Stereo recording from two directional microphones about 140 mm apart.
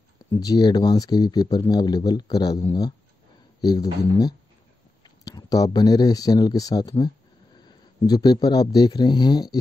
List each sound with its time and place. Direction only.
0.3 s speech: 25° left (ahead or behind)
8.1 s speech: 30° left (ahead or behind)